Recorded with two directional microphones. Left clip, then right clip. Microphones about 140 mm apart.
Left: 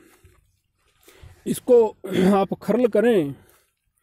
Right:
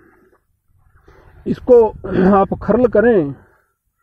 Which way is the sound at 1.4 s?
20° left (ahead or behind).